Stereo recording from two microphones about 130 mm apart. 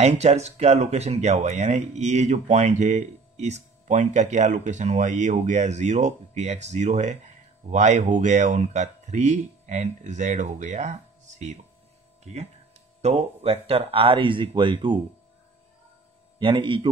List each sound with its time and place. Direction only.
0.0 s speech: 60° right (ahead or behind)
13.0 s speech: 50° right (ahead or behind)
16.3 s speech: 40° right (ahead or behind)